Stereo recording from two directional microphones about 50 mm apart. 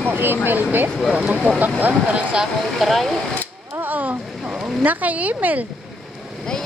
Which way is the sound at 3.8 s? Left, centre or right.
Right.